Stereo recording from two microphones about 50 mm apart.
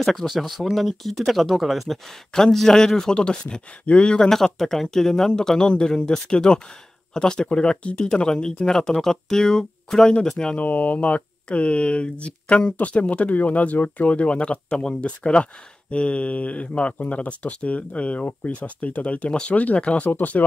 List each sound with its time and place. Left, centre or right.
0.0 s speech: centre
4.3 s speech: centre
10.5 s speech: left